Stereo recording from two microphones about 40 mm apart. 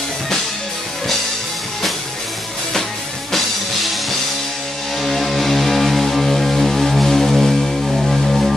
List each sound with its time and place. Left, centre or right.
5.0 s music: centre